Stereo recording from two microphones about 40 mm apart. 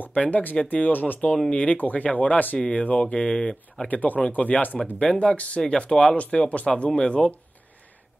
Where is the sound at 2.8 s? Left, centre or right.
Left.